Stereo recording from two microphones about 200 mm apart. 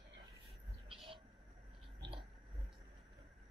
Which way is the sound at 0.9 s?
25° right (ahead or behind).